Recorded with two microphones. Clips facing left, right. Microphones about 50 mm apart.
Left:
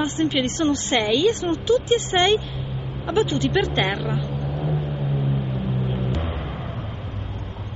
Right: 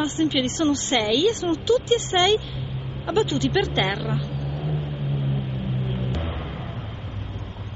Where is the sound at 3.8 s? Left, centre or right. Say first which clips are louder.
Left 1 dB; centre.